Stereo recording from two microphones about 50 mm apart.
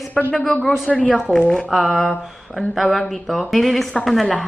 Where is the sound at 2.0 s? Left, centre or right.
Centre.